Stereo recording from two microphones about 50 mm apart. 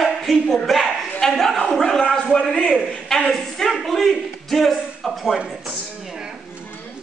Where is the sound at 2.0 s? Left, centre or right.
Centre.